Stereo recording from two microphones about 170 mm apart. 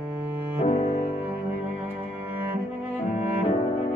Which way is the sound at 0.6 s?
40° left (ahead or behind).